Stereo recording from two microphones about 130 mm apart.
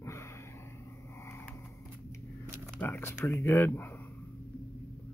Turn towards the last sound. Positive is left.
turn(degrees=15)  # may be behind; listen again after turning